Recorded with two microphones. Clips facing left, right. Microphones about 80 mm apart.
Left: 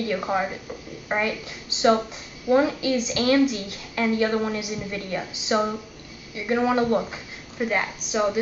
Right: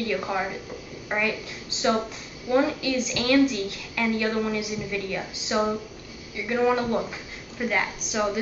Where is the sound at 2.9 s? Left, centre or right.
Left.